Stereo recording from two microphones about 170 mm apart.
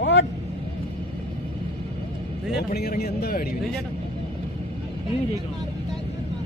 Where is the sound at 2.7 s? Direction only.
65° left (ahead or behind).